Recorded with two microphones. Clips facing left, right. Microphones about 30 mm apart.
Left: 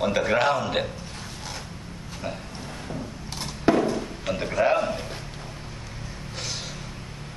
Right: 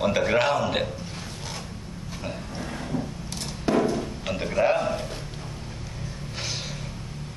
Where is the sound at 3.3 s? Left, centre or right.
Left.